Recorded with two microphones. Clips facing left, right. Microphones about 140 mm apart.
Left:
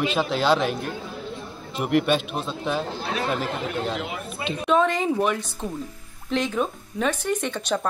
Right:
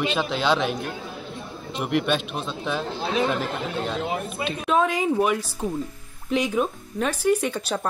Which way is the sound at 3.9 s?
35° right (ahead or behind).